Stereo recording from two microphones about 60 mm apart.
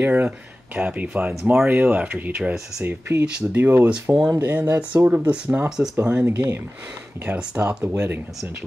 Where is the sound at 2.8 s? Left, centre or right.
Right.